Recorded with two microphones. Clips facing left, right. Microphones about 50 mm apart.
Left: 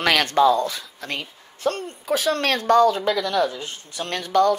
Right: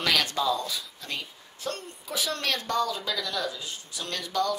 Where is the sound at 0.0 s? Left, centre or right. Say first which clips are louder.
Left 9 dB; left.